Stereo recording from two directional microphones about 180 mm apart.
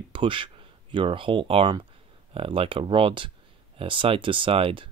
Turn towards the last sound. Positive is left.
turn(degrees=-30)  # may be behind; listen again after turning